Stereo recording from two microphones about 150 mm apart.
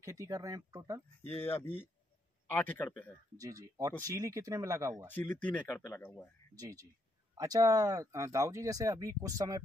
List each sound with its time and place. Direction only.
0.0 s speech: 20° right (ahead or behind)
2.5 s speech: 10° left (ahead or behind)
3.3 s speech: 25° right (ahead or behind)
5.1 s speech: 10° left (ahead or behind)
6.5 s speech: 25° right (ahead or behind)